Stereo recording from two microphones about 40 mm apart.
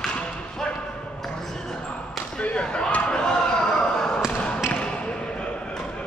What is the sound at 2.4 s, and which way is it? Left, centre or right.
Slam, left.